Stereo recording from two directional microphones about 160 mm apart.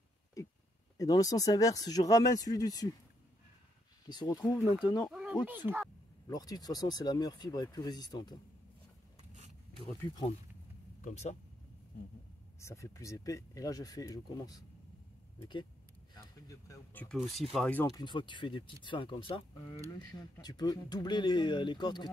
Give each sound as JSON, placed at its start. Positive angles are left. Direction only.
{"t": 0.9, "sound": "speech", "side_deg": 20}
{"t": 4.1, "sound": "speech", "side_deg": 25}
{"t": 5.1, "sound": "a sound", "side_deg": -5}
{"t": 6.2, "sound": "speech", "side_deg": 25}
{"t": 11.0, "sound": "speech", "side_deg": 50}
{"t": 12.5, "sound": "speech", "side_deg": 20}
{"t": 16.2, "sound": "speech", "side_deg": 20}
{"t": 17.0, "sound": "speech", "side_deg": 0}
{"t": 17.8, "sound": "speech", "side_deg": 25}